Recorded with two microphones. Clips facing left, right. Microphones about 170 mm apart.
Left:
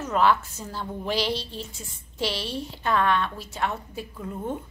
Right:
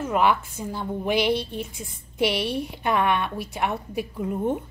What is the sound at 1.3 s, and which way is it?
Speech, 55° right (ahead or behind).